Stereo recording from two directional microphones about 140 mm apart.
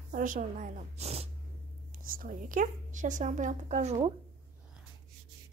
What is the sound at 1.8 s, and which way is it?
A woman's voice, 85° right.